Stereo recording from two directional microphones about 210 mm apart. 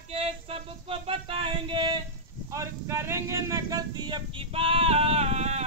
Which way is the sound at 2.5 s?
15° right (ahead or behind).